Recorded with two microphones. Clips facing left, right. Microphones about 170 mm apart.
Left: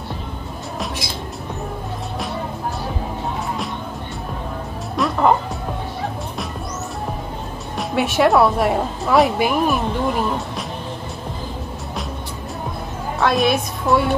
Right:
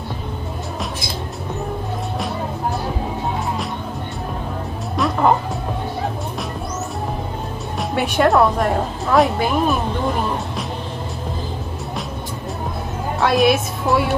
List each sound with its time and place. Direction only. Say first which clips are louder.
4.9 s music: even; centre (ahead or behind)
7.7 s a woman's voice: even; centre (ahead or behind)
13.2 s a woman's voice: right 2 dB; centre (ahead or behind)